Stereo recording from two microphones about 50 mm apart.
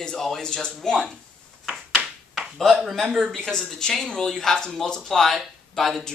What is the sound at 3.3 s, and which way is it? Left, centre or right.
Speech, centre.